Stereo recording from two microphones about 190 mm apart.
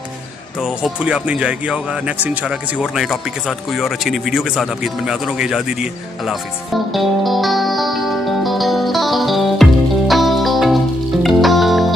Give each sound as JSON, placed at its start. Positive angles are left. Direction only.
{"t": 0.6, "sound": "speech", "side_deg": -5}
{"t": 6.2, "sound": "music", "side_deg": 0}